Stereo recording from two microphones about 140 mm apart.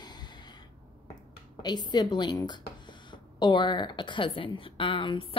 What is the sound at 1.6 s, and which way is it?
A woman's voice, 30° left (ahead or behind).